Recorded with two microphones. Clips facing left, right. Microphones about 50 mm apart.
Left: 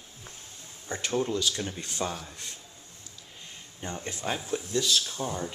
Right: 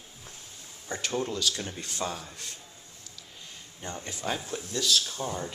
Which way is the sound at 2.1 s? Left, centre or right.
Centre.